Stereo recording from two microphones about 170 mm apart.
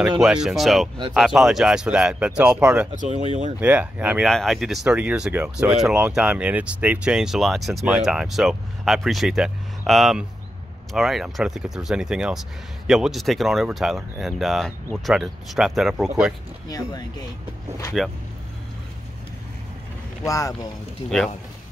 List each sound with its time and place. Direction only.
0.2 s speech: 5° right (ahead or behind)
3.0 s speech: 45° right (ahead or behind)
3.6 s speech: 10° right (ahead or behind)
16.6 s speech: 20° left (ahead or behind)
18.0 s speech: centre (ahead or behind)
20.2 s speech: 20° left (ahead or behind)